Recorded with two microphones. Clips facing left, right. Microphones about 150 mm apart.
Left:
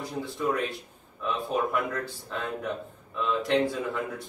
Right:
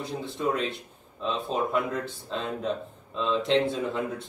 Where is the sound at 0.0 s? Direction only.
25° right (ahead or behind).